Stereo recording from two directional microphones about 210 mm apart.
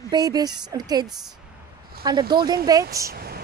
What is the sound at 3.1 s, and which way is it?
Speech, 45° right (ahead or behind).